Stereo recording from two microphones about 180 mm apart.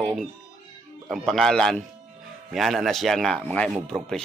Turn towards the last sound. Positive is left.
turn(degrees=0)  # may be behind; listen again after turning